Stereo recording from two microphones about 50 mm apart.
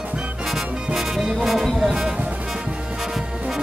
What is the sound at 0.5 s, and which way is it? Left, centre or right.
Music, centre.